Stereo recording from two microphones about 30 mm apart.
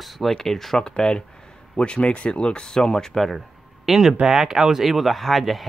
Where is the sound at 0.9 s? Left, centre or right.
Left.